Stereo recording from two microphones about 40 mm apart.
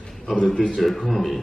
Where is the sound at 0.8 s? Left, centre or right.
Centre.